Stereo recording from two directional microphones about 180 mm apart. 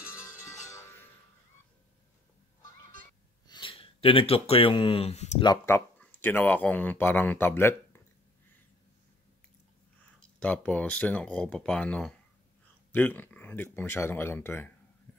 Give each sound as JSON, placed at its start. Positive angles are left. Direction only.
{"t": 0.5, "sound": "music", "side_deg": 15}
{"t": 3.4, "sound": "speech", "side_deg": 25}
{"t": 5.4, "sound": "speech", "side_deg": 20}
{"t": 10.4, "sound": "speech", "side_deg": 10}